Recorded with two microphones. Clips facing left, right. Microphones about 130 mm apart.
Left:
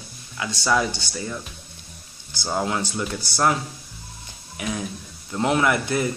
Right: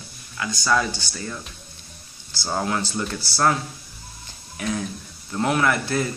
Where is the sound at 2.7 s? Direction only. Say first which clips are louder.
Even; 15° left (ahead or behind).